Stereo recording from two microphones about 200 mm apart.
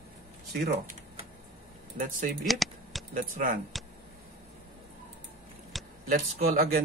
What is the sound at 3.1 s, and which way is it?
Speech, 45° right (ahead or behind).